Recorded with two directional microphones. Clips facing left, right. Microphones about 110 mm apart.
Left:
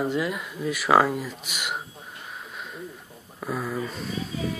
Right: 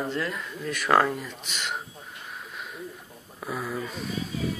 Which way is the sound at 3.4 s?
Centre (ahead or behind).